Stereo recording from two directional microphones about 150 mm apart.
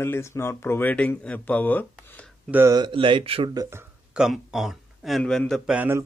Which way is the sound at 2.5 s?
20° right (ahead or behind).